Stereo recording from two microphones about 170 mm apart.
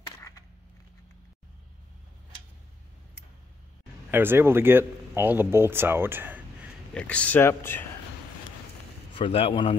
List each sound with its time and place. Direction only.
4.1 s speech: 15° right (ahead or behind)
6.9 s speech: 5° left (ahead or behind)
9.1 s a man's voice: 30° left (ahead or behind)